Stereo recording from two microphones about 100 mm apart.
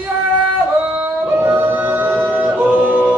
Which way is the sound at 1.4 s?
20° right (ahead or behind).